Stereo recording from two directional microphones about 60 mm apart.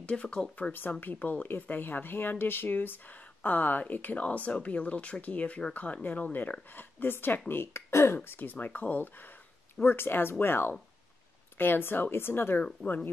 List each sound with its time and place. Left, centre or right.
0.0 s speech: centre
0.6 s speech: left